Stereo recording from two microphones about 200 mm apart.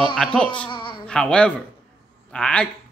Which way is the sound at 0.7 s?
25° left (ahead or behind).